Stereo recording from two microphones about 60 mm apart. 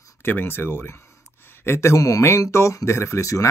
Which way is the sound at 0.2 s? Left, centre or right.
Left.